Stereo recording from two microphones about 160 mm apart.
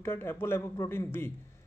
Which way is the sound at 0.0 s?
15° left (ahead or behind).